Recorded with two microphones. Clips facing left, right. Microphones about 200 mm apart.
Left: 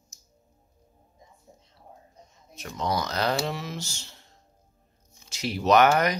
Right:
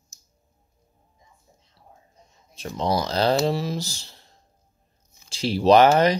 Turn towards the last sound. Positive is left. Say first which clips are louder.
# right 5 dB
turn(degrees=-30)  # may be behind; listen again after turning